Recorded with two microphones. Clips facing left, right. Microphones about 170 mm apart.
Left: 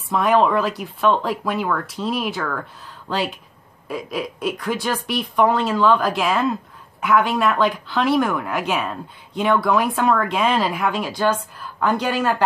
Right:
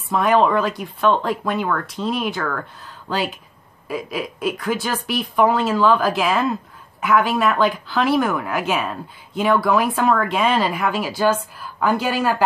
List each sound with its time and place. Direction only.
0.1 s speech: centre (ahead or behind)